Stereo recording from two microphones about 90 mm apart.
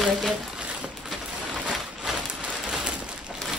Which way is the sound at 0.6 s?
15° right (ahead or behind).